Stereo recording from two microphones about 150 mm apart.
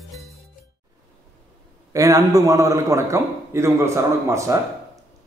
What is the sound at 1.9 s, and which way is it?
A man's voice, 20° right (ahead or behind).